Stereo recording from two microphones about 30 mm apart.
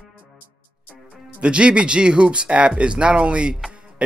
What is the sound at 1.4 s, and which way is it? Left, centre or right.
Speech, right.